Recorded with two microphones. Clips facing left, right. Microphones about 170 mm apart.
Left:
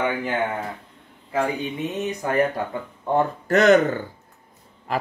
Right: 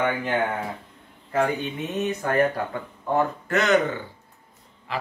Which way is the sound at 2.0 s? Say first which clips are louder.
Even; 20° left (ahead or behind).